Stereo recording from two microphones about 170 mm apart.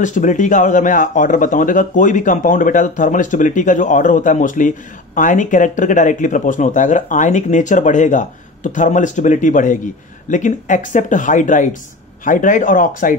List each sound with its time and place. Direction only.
0.0 s a man's voice: 45° left (ahead or behind)